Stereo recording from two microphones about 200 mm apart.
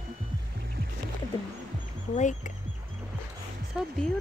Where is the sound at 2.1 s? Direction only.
40° left (ahead or behind).